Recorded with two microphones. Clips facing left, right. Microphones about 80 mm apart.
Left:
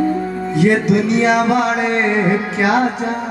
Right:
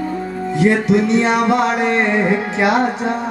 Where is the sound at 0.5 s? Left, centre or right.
Right.